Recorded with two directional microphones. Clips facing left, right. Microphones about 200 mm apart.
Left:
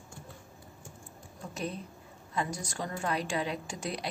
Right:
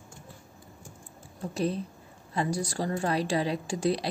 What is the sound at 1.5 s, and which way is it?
A woman's voice, 35° right (ahead or behind).